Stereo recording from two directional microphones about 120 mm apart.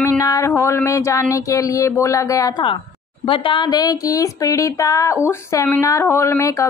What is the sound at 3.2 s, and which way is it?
Speech, 45° left (ahead or behind).